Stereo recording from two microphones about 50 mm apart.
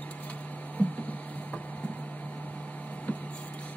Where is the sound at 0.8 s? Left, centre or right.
Left.